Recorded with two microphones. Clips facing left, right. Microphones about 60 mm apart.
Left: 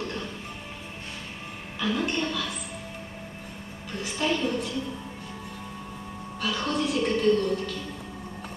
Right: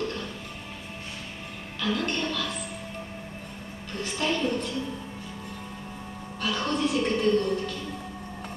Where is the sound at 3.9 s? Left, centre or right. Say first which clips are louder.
Left 1 dB; centre.